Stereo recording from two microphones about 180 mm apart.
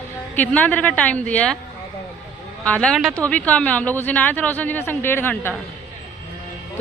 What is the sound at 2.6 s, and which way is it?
Speech, 5° left (ahead or behind).